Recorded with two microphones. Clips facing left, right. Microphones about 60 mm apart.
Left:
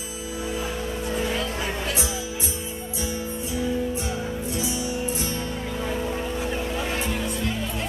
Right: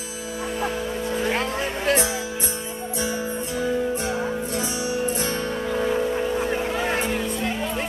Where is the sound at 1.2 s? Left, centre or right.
Right.